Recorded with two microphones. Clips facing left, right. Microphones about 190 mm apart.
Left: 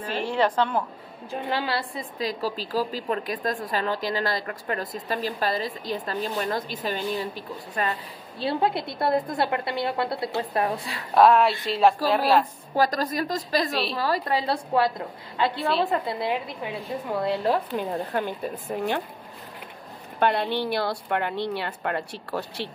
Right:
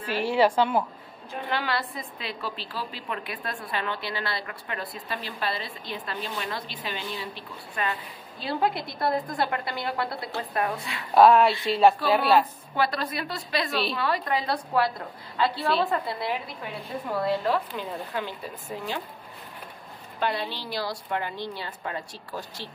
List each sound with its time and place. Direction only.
0.0 s a woman's voice: 5° right (ahead or behind)
1.5 s a woman's voice: 30° left (ahead or behind)
8.5 s a woman's voice: 25° left (ahead or behind)
11.1 s a woman's voice: centre (ahead or behind)
12.7 s a woman's voice: 40° left (ahead or behind); by 15.5 s 20° left (ahead or behind)
15.6 s a woman's voice: centre (ahead or behind)
15.9 s a woman's voice: 25° left (ahead or behind)
17.5 s speech: 45° left (ahead or behind)
20.2 s a woman's voice: 50° left (ahead or behind)